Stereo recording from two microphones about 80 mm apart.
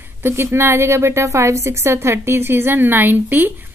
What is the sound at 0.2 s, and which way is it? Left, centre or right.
A woman's voice, right.